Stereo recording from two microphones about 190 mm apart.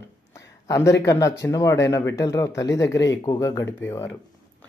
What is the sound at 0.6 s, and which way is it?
Speech, 15° left (ahead or behind).